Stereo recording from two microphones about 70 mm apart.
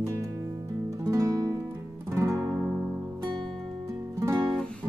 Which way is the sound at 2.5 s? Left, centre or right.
Centre.